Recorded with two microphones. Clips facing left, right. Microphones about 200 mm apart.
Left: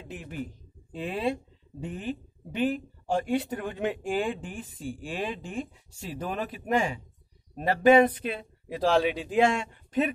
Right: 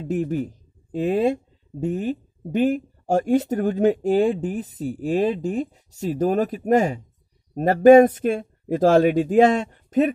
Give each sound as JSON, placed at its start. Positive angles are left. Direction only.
{"t": 0.0, "sound": "speech", "side_deg": -40}